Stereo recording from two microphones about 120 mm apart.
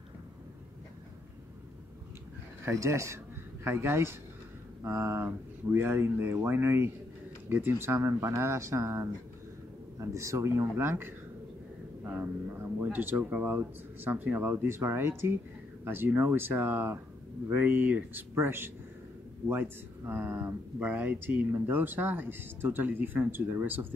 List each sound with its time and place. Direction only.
2.6 s speech: 25° right (ahead or behind)